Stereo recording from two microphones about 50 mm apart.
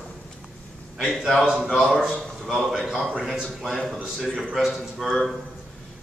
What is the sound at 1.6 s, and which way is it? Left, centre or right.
A man's voice, centre.